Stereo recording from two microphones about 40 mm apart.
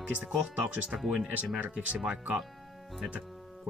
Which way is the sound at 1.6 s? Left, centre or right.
Right.